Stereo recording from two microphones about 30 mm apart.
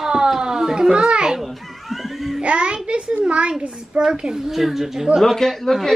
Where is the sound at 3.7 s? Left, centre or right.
Right.